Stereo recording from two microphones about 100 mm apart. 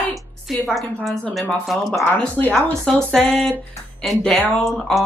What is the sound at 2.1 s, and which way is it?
Speech, 15° left (ahead or behind).